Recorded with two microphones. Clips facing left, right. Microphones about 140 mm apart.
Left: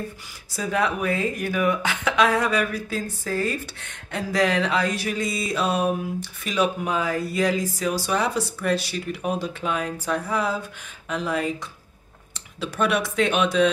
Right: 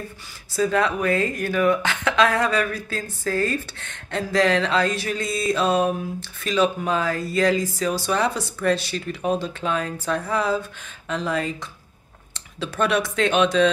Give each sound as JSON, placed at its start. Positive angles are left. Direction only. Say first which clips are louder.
{"t": 0.6, "sound": "speech", "louder": "right 3 dB", "side_deg": 10}